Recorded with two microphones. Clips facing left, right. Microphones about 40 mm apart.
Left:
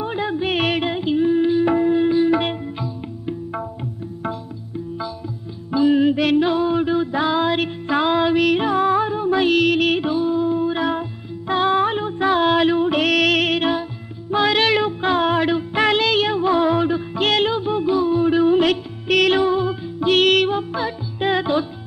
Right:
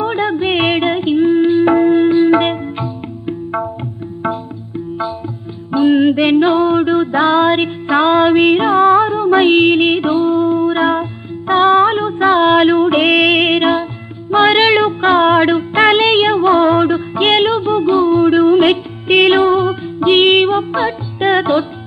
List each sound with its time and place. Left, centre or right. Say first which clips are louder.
0.0 s music: right 7 dB; right
5.7 s music: right 5 dB; right